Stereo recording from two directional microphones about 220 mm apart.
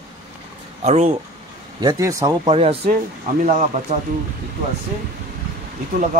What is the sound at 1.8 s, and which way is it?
Speech, 15° right (ahead or behind).